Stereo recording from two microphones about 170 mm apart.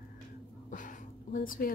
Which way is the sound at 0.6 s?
50° left (ahead or behind).